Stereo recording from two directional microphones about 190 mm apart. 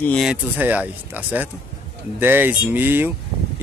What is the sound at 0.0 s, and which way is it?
Speech, centre (ahead or behind).